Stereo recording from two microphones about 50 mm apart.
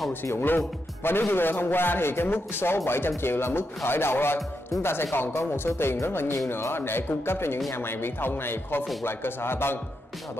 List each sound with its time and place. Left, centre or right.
0.2 s speech: left